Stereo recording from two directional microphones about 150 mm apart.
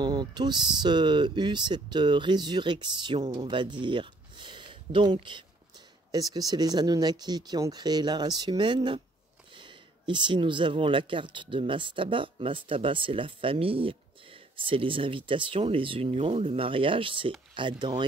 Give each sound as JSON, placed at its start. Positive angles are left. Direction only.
{"t": 0.0, "sound": "speech", "side_deg": -30}